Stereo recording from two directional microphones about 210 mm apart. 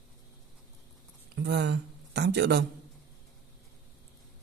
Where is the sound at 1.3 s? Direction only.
55° right (ahead or behind).